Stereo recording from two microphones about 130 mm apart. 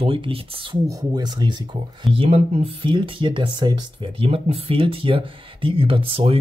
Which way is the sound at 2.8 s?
40° right (ahead or behind).